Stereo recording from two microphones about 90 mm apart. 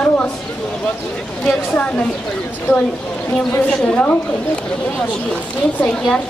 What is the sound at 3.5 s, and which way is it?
Speech, 15° left (ahead or behind).